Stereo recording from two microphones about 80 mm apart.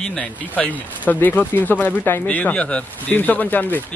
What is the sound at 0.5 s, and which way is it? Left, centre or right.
Speech, centre.